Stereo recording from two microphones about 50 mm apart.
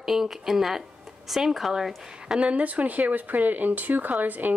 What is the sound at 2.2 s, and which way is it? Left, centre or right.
Speech, right.